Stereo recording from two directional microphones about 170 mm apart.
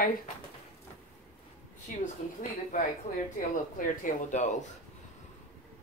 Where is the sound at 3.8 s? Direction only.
50° left (ahead or behind).